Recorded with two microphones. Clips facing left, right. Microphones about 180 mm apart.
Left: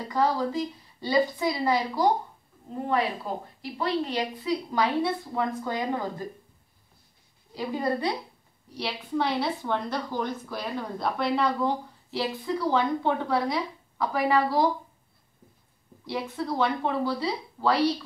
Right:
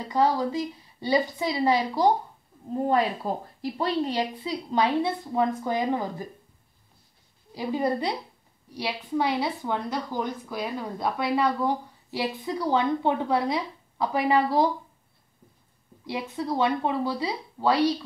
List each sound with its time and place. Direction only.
0.1 s a woman's voice: 15° right (ahead or behind)
2.7 s a woman's voice: 35° right (ahead or behind); by 6.2 s 15° right (ahead or behind)
7.5 s a woman's voice: 15° right (ahead or behind)
16.1 s a woman's voice: 15° right (ahead or behind)